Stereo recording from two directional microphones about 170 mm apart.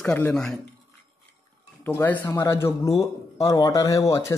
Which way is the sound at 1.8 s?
10° left (ahead or behind).